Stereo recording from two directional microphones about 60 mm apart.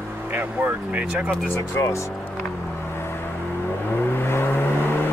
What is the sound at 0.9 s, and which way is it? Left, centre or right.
Speech, right.